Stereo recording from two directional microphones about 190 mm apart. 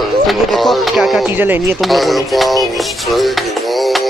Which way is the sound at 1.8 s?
Centre (ahead or behind).